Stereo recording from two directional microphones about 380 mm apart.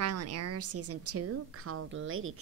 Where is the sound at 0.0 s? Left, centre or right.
Right.